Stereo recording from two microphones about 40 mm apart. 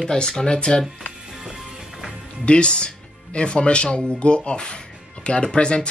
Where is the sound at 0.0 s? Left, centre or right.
Centre.